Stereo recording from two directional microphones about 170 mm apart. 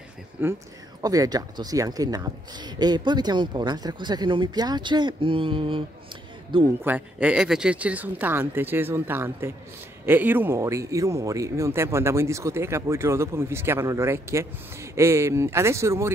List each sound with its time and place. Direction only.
0.4 s speech: 10° right (ahead or behind); by 5.9 s 30° right (ahead or behind)
6.8 s speech: 10° right (ahead or behind)